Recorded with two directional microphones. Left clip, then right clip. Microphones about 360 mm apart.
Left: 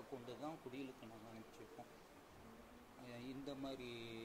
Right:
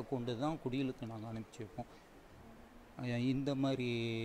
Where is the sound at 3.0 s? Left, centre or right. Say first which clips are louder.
Right 14 dB; right.